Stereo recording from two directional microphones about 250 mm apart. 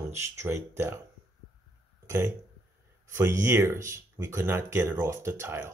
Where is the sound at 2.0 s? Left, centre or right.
Centre.